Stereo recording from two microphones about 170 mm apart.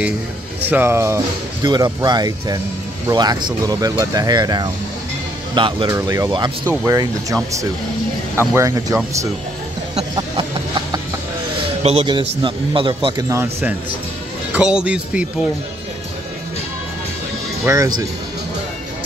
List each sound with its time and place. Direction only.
0.7 s speech: 15° right (ahead or behind); by 5.9 s 30° right (ahead or behind)
5.9 s speech: 20° right (ahead or behind)
8.4 s speech: 15° right (ahead or behind)
9.9 s chicken: 30° right (ahead or behind)
11.8 s speech: 35° right (ahead or behind)
13.3 s speech: 15° right (ahead or behind)
17.6 s speech: 20° right (ahead or behind)